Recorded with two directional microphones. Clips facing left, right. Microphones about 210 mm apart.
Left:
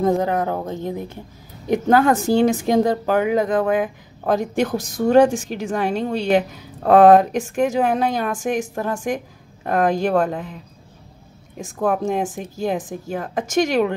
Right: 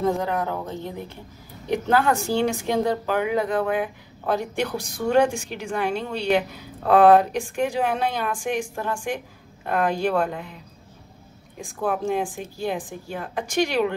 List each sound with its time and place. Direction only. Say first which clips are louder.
0.0 s a woman's voice: left 5 dB; 40° left (ahead or behind)
11.8 s a woman's voice: left 4 dB; 40° left (ahead or behind)